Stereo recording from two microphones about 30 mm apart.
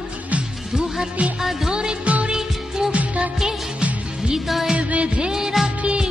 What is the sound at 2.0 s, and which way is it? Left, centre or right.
Music of bollywood, right.